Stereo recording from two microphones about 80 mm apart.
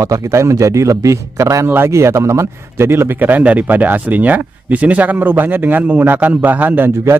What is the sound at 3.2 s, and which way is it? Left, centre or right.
Speech, right.